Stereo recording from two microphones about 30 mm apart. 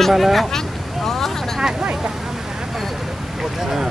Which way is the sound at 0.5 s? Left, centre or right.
Centre.